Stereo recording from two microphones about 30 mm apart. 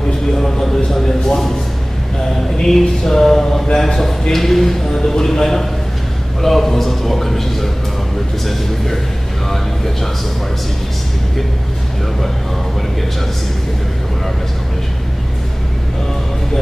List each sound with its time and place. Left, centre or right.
0.4 s a man's voice: centre